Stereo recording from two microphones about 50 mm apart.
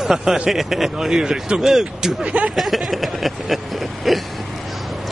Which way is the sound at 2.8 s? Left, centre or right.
Centre.